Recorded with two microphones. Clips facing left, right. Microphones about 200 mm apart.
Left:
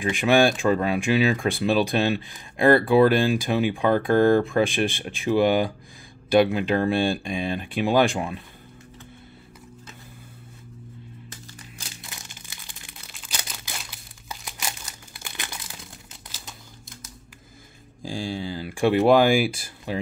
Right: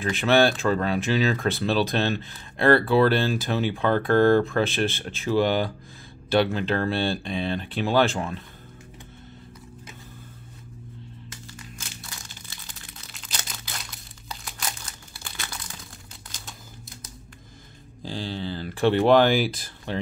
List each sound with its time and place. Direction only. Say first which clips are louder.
0.1 s speech: left 1 dB; 15° left (ahead or behind)
13.2 s crumpling: left 1 dB; 10° left (ahead or behind)
16.3 s camera: even; 5° left (ahead or behind)
18.0 s speech: left 2 dB; 10° left (ahead or behind)